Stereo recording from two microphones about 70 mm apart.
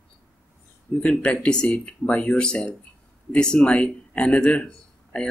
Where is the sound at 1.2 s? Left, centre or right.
Centre.